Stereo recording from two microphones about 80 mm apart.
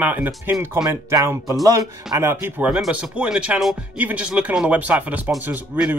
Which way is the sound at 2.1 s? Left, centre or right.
Right.